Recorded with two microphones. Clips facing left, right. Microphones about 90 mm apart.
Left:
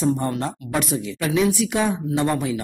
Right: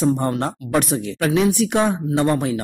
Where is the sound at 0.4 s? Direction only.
60° right (ahead or behind).